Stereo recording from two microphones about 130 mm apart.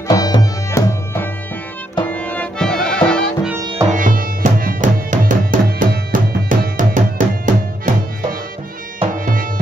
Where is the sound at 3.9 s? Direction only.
90° right.